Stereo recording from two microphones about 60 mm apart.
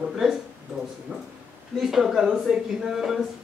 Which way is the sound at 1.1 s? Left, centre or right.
Right.